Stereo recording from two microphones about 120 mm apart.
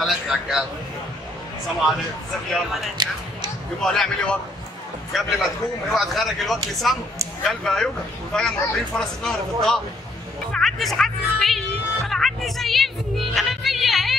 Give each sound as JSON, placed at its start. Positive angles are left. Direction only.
{"t": 0.0, "sound": "a man's voice", "side_deg": -5}
{"t": 3.0, "sound": "speech", "side_deg": -40}
{"t": 3.8, "sound": "a man's voice", "side_deg": 5}
{"t": 10.5, "sound": "music", "side_deg": 0}